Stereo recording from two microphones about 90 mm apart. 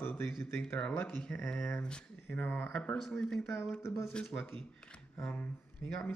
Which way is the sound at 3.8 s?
30° left (ahead or behind).